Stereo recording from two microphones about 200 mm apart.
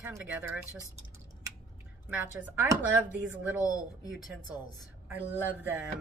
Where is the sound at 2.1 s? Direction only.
10° right (ahead or behind).